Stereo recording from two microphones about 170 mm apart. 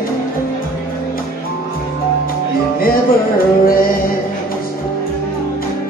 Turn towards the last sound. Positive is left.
turn(degrees=60)  # may be behind; listen again after turning